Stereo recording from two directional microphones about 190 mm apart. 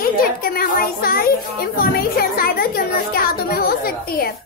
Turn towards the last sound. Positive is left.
turn(degrees=55)  # may be behind; listen again after turning